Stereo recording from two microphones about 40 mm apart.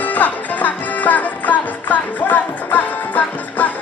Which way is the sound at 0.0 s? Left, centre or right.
Left.